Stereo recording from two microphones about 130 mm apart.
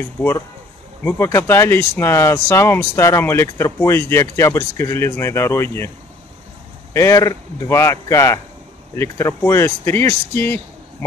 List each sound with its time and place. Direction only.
1.0 s speech: 15° left (ahead or behind)
6.9 s speech: 20° left (ahead or behind)